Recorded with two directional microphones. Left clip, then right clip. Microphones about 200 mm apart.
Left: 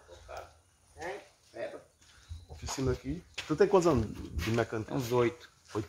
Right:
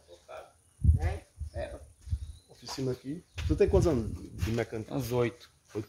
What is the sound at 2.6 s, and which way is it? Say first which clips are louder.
Speech: left 1 dB; centre (ahead or behind).